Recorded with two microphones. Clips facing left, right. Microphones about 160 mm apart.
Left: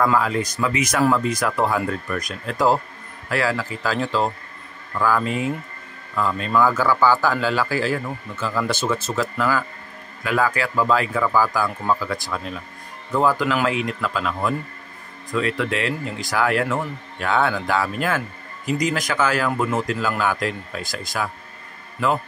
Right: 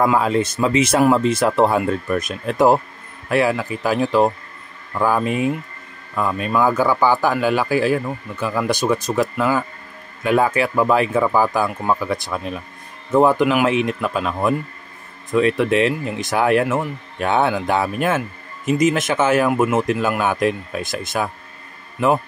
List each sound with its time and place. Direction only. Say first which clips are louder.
0.0 s a man's voice: right 3 dB; 20° right (ahead or behind)